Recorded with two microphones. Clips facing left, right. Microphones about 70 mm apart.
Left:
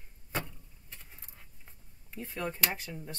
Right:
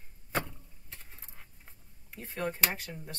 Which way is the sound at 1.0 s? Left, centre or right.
Right.